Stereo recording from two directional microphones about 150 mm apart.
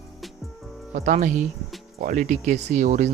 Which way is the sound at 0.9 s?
55° right (ahead or behind).